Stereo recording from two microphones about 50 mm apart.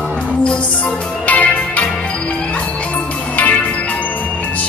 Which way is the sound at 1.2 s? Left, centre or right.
Left.